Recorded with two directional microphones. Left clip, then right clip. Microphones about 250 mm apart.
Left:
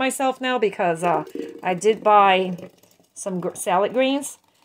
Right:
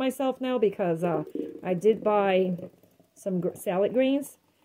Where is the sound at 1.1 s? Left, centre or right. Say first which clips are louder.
Left 7 dB; centre.